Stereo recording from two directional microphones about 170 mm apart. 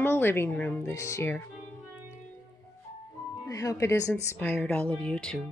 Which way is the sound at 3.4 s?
20° left (ahead or behind).